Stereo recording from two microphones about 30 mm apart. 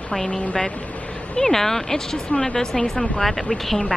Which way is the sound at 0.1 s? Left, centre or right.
Centre.